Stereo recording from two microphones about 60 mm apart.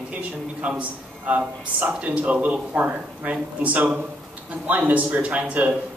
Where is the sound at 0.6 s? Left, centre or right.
Right.